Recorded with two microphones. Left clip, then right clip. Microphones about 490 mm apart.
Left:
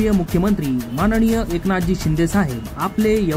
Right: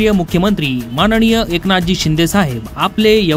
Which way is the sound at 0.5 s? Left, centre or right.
Centre.